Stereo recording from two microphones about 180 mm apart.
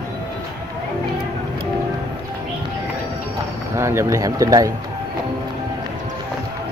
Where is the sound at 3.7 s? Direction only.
15° right (ahead or behind).